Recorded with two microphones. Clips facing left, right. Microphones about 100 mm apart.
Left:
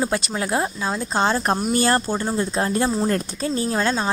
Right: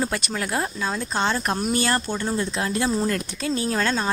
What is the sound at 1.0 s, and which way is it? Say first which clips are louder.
Speech: left 5 dB; 30° left (ahead or behind).